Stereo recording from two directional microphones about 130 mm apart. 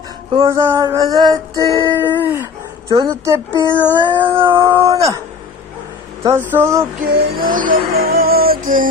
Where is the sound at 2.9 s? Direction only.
35° right (ahead or behind).